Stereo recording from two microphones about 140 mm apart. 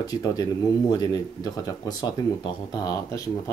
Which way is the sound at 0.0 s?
25° left (ahead or behind).